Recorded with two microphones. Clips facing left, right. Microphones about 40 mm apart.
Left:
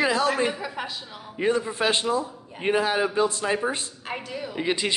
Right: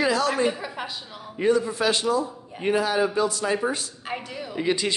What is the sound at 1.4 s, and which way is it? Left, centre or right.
A man's voice, left.